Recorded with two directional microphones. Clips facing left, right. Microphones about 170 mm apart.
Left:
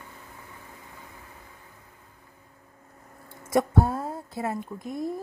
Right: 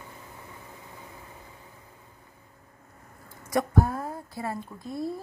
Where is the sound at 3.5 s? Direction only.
25° left (ahead or behind).